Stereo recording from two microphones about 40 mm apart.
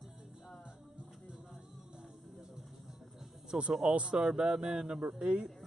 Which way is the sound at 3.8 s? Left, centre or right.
Right.